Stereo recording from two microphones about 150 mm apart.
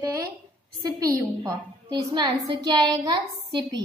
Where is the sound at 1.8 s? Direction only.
30° right (ahead or behind).